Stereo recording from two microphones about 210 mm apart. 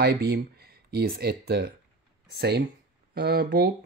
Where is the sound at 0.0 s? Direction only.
50° right (ahead or behind).